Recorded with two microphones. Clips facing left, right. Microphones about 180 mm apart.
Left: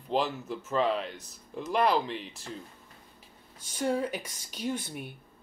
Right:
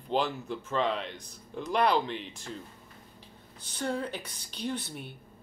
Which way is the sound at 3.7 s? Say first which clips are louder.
Left 3 dB; 10° left (ahead or behind).